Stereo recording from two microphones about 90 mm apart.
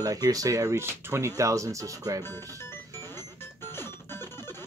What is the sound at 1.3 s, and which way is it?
Speech, 35° right (ahead or behind).